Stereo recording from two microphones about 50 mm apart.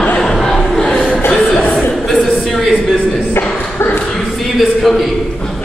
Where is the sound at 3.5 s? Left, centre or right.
Left.